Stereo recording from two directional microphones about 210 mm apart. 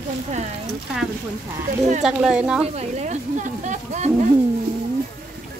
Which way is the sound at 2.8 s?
35° right (ahead or behind).